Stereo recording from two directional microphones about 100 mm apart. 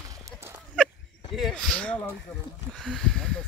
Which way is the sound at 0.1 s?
30° right (ahead or behind).